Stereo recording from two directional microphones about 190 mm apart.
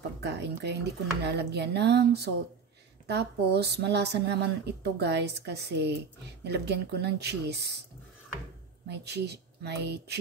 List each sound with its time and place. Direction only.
0.2 s speech: 65° right (ahead or behind)
8.8 s speech: 60° right (ahead or behind)